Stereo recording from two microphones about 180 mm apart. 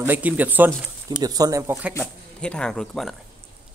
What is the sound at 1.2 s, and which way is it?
Speech, 20° right (ahead or behind).